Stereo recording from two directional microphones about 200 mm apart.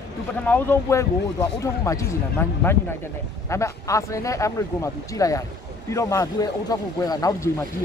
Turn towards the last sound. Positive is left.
turn(degrees=15)  # may be behind; listen again after turning